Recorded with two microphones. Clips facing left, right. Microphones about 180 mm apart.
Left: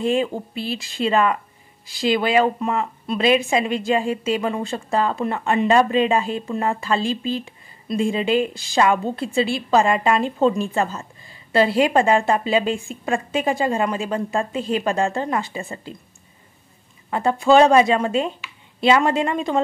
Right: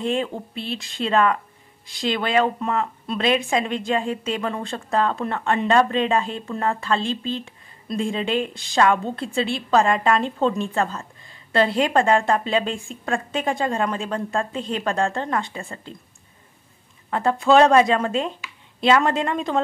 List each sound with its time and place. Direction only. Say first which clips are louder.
0.0 s a woman's voice: left 3 dB; 5° left (ahead or behind)
17.1 s a woman's voice: left 1 dB; centre (ahead or behind)